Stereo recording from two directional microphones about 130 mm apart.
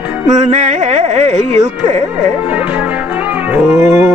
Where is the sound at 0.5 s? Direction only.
55° right (ahead or behind).